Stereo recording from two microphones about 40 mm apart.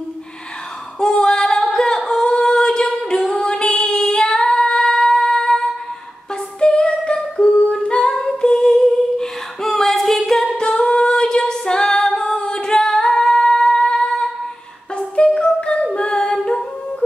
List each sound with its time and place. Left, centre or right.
0.9 s female singing: centre
2.0 s singing: centre
3.3 s female singing: left
7.8 s humming: left
8.1 s humming: centre
10.6 s female singing: left
15.0 s music: left
15.9 s singing: left